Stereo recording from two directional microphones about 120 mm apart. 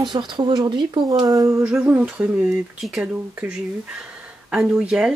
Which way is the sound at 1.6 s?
10° right (ahead or behind).